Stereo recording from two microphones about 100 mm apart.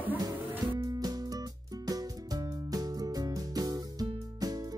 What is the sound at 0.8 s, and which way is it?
Music, 40° right (ahead or behind).